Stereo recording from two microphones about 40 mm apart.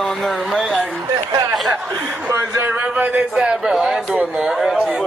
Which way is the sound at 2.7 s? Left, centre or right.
Right.